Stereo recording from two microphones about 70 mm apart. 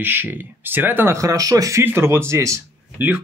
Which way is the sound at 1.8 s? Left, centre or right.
Right.